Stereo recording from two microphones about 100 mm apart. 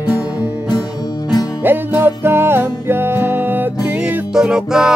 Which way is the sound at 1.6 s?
20° right (ahead or behind).